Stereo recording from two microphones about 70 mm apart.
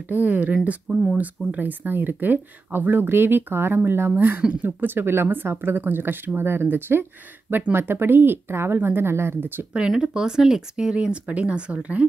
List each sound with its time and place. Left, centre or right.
0.1 s speech: right
4.4 s speech: centre
4.6 s speech: right
9.8 s speech: centre